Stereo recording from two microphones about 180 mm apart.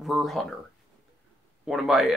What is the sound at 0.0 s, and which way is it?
Speech, centre (ahead or behind).